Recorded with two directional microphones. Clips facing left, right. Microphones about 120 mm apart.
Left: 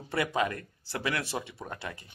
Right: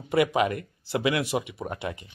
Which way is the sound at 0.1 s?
15° right (ahead or behind).